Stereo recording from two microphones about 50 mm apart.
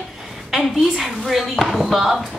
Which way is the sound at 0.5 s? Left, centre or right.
Centre.